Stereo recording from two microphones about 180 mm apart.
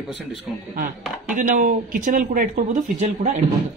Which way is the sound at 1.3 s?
45° right (ahead or behind).